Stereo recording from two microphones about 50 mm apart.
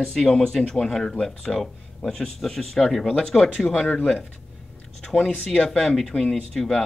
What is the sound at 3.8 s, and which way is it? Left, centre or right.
Speech, left.